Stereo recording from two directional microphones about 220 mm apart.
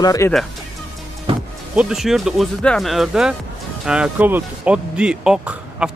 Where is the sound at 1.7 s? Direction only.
5° right (ahead or behind).